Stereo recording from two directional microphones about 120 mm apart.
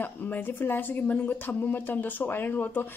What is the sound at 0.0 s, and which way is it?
Speech, 15° left (ahead or behind).